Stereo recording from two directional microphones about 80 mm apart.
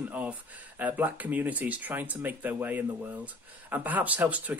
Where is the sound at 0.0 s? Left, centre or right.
Right.